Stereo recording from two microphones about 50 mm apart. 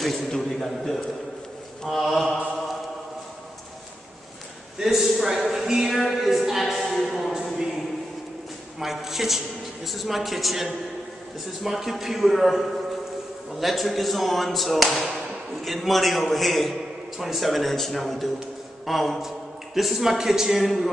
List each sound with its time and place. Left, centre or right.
0.3 s a man's voice: centre
2.2 s mantra: right
4.7 s a man's voice: centre
7.5 s a sound: centre
8.7 s a man's voice: centre